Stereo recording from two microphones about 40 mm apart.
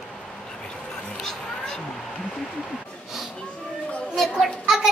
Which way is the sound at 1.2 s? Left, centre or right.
Centre.